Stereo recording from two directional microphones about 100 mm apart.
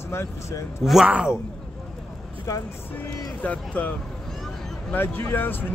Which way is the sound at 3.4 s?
15° left (ahead or behind).